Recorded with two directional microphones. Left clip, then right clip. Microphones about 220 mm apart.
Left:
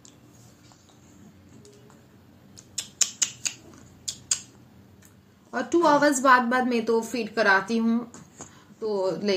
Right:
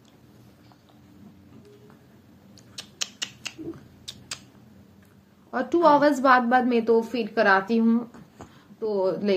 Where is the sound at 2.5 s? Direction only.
15° left (ahead or behind).